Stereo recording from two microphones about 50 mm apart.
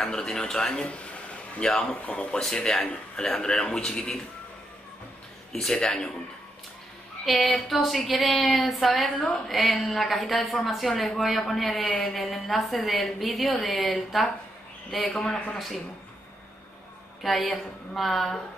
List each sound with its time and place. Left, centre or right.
0.0 s a man's voice: centre
5.5 s speech: centre
7.2 s a woman's voice: centre
17.2 s a woman's voice: centre